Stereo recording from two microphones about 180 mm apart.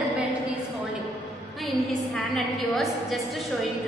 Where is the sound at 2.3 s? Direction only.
Centre (ahead or behind).